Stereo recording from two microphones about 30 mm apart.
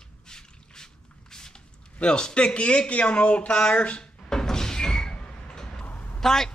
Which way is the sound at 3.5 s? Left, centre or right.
Left.